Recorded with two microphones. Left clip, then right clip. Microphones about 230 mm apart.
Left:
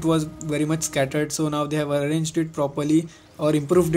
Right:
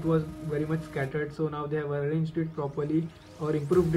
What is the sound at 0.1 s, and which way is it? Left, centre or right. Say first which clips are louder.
Speech: left 2 dB; left.